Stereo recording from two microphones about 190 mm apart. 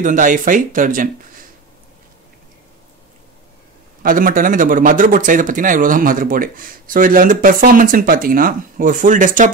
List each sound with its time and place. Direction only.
0.0 s speech: 45° right (ahead or behind)
4.0 s speech: 45° right (ahead or behind)